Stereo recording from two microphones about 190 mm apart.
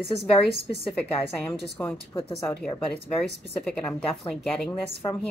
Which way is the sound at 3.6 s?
5° left (ahead or behind).